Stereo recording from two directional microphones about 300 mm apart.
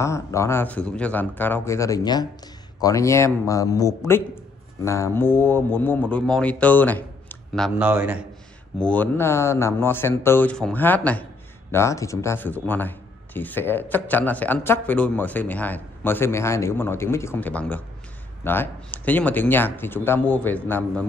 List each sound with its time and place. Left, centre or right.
0.0 s speech: centre